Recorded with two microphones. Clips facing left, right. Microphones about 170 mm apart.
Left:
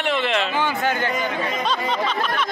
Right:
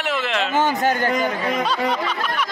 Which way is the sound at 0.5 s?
40° right (ahead or behind).